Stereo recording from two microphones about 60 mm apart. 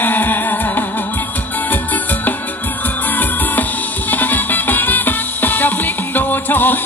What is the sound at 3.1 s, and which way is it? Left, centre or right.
Music, left.